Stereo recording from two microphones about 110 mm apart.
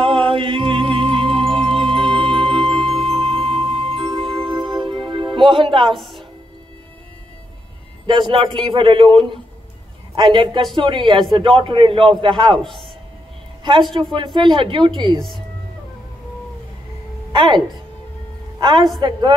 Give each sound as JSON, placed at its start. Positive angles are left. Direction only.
{"t": 0.0, "sound": "music", "side_deg": -55}
{"t": 5.9, "sound": "speech", "side_deg": 0}
{"t": 8.1, "sound": "a man's voice", "side_deg": -50}
{"t": 14.1, "sound": "a man's voice", "side_deg": -45}
{"t": 15.1, "sound": "speech", "side_deg": 5}
{"t": 17.3, "sound": "a woman's voice", "side_deg": -45}
{"t": 18.6, "sound": "a woman's voice", "side_deg": -45}